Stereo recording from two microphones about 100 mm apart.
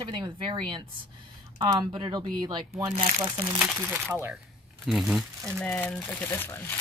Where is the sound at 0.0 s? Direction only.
55° right (ahead or behind).